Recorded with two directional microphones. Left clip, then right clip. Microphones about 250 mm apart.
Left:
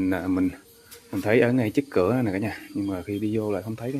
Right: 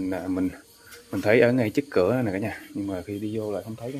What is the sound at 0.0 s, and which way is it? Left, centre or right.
Speech, centre.